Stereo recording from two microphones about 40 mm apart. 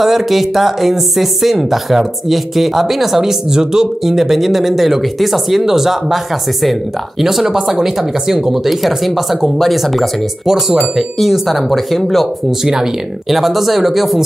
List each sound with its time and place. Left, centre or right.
0.0 s speech: centre
7.2 s speech: centre
10.4 s speech: centre
12.4 s speech: centre